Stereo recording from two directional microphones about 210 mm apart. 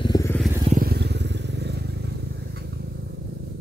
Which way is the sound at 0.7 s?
45° right (ahead or behind).